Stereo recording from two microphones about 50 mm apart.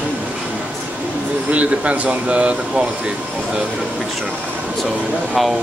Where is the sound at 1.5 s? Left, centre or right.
Right.